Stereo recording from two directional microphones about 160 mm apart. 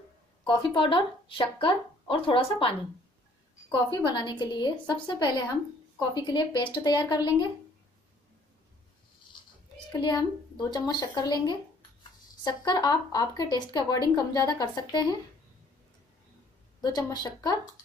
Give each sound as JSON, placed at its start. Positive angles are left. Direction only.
{"t": 0.5, "sound": "speech", "side_deg": 35}
{"t": 3.9, "sound": "speech", "side_deg": 30}
{"t": 9.9, "sound": "speech", "side_deg": 30}
{"t": 16.8, "sound": "speech", "side_deg": 25}